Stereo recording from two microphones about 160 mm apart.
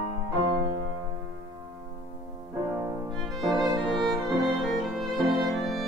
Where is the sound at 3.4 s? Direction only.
Centre (ahead or behind).